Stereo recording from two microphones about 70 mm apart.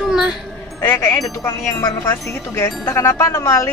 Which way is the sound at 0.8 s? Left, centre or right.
Left.